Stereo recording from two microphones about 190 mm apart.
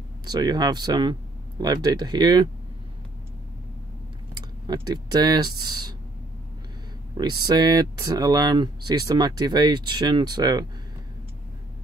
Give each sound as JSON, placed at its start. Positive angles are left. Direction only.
{"t": 0.2, "sound": "speech", "side_deg": -20}
{"t": 4.4, "sound": "speech", "side_deg": -20}
{"t": 7.2, "sound": "speech", "side_deg": -20}